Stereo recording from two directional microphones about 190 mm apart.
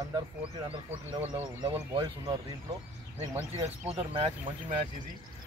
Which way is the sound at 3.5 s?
35° right (ahead or behind).